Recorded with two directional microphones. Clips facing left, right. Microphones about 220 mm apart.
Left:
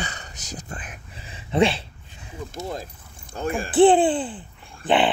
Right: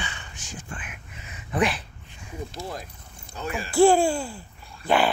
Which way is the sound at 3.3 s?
50° left (ahead or behind).